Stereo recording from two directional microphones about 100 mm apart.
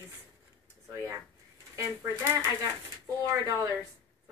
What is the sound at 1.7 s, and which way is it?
Speech, 30° right (ahead or behind).